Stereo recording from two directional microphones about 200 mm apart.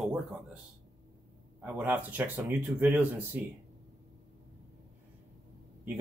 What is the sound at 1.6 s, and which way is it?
Speech, 10° right (ahead or behind).